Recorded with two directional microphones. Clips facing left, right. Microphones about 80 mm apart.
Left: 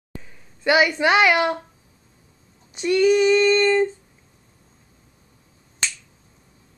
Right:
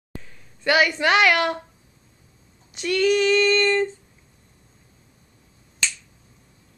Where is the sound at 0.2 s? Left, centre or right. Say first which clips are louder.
Left 6 dB; centre.